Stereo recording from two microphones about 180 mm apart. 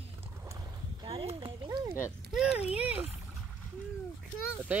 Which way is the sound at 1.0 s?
30° right (ahead or behind).